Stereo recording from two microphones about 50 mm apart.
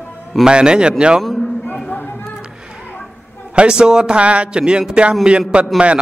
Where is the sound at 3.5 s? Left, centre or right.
Centre.